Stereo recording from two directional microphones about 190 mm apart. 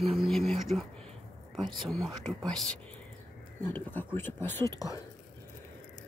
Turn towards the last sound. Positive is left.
turn(degrees=20)  # may be behind; listen again after turning